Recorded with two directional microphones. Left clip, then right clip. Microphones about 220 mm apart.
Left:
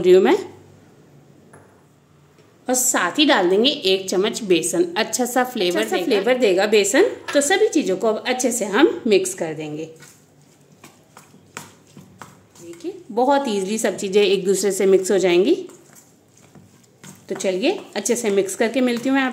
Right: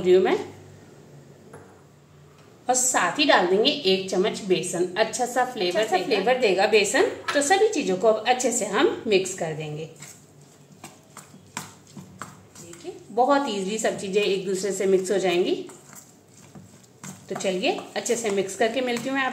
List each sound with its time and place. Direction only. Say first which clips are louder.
0.0 s a woman's voice: left 5 dB; 50° left (ahead or behind)
2.6 s a woman's voice: left 2 dB; 50° left (ahead or behind)
13.1 s a woman's voice: left 3 dB; 50° left (ahead or behind)
17.3 s a woman's voice: left 4 dB; 50° left (ahead or behind)